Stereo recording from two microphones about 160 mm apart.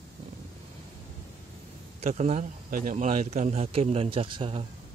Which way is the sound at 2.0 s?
45° right (ahead or behind).